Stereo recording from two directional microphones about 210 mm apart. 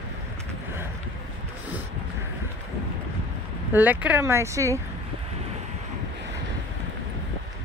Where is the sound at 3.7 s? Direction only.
10° right (ahead or behind).